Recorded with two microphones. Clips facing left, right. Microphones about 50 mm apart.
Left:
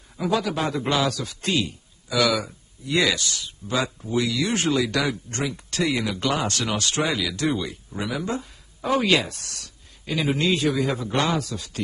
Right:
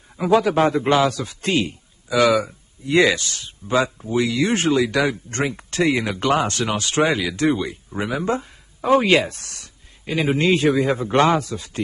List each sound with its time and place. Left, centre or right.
0.2 s speech: right